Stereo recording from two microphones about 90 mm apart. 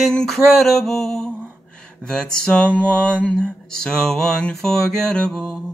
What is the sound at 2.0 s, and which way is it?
Mantra, 10° left (ahead or behind).